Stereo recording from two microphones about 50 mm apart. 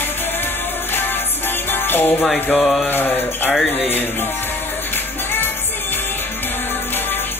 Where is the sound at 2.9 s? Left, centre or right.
Left.